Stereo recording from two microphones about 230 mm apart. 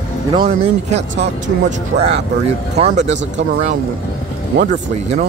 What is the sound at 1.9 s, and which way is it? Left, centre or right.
Speech, right.